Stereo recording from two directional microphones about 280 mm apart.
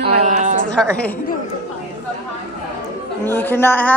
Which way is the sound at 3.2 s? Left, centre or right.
Centre.